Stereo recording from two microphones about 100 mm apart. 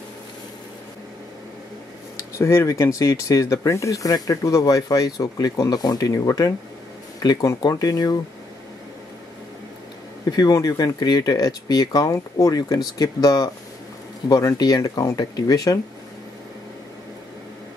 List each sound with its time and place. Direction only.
2.3 s speech: 30° left (ahead or behind)
10.3 s speech: 40° left (ahead or behind)